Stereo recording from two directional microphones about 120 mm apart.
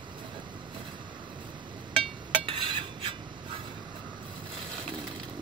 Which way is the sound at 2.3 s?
45° right (ahead or behind).